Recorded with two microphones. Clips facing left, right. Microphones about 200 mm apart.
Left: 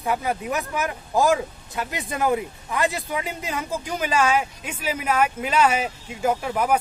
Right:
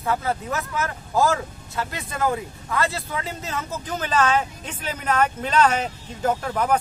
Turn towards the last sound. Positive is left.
turn(degrees=10)  # may be behind; listen again after turning